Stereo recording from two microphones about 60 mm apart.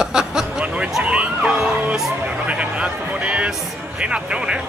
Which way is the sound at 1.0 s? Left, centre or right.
Centre.